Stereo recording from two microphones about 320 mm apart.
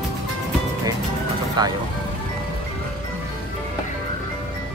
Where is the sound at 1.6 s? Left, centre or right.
Centre.